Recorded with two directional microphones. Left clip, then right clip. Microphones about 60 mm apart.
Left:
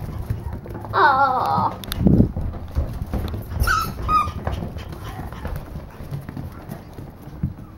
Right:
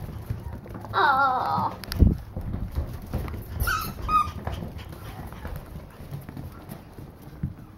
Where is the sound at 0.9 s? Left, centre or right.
Centre.